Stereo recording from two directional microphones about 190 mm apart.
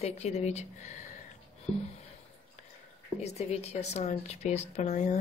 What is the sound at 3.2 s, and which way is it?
A woman's voice, 35° left (ahead or behind).